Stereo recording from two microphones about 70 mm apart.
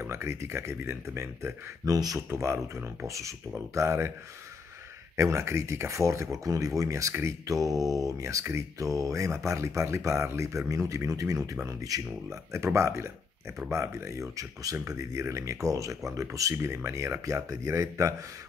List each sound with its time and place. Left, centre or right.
0.0 s speech: right
1.9 s speech: right
2.2 s speech: right
3.1 s mantra: right
3.7 s speech: right
5.1 s mantra: right
11.9 s speech: right
12.5 s mantra: right
16.5 s speech: right
17.5 s mantra: right